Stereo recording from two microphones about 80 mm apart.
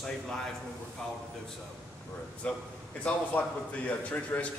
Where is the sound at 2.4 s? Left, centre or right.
Centre.